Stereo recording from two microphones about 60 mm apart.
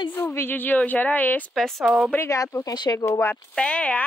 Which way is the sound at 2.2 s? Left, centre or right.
Left.